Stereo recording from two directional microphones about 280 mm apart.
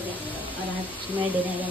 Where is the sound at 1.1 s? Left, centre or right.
Centre.